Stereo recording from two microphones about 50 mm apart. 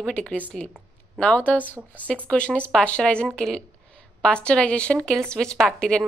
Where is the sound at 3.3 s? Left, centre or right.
Centre.